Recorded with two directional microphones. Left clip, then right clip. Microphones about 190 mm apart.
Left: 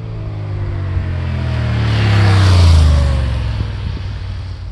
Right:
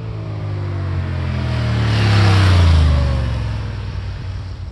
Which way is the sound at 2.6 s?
60° left (ahead or behind).